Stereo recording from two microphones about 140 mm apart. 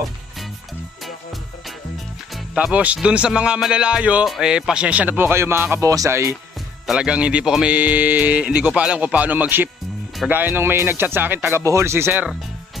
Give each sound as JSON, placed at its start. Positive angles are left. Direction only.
{"t": 2.3, "sound": "speech", "side_deg": -5}
{"t": 6.9, "sound": "speech", "side_deg": -5}